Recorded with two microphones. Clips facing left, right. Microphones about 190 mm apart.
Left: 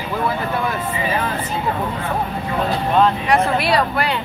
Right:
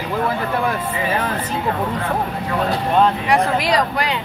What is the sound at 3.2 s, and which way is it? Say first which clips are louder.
Speech: even; 15° right (ahead or behind).